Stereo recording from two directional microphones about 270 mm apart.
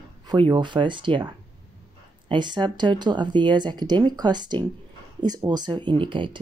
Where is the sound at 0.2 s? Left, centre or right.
Centre.